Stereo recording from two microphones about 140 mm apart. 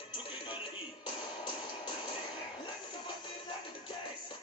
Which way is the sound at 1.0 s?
40° left (ahead or behind).